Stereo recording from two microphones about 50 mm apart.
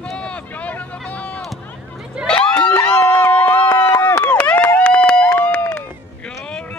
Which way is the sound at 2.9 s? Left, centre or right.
Left.